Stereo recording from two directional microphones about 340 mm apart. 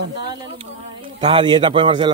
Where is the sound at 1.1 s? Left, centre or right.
Centre.